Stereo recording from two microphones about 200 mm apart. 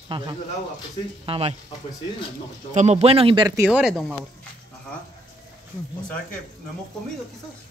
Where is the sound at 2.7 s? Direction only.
35° right (ahead or behind); by 4.2 s centre (ahead or behind).